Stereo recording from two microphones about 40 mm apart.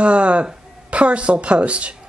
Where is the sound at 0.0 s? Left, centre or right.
Right.